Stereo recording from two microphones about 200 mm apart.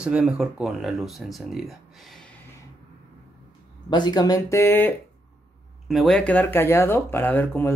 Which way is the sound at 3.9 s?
20° left (ahead or behind).